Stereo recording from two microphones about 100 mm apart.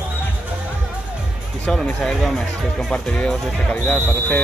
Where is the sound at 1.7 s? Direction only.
10° left (ahead or behind).